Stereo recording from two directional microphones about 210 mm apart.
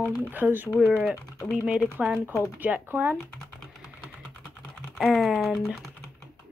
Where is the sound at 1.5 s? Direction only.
5° right (ahead or behind).